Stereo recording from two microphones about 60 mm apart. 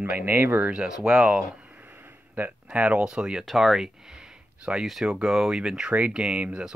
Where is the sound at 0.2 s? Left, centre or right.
Right.